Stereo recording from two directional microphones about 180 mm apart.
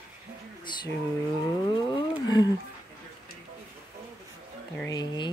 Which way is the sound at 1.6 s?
25° left (ahead or behind).